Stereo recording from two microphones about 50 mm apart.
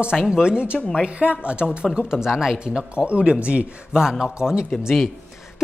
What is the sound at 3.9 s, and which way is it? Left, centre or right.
Speech, centre.